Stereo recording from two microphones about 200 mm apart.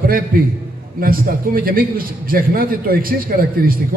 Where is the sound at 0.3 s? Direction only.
45° right (ahead or behind).